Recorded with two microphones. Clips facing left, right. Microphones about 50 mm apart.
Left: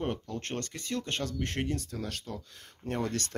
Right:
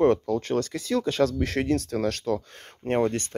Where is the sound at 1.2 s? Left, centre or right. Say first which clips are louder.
Right 9 dB; right.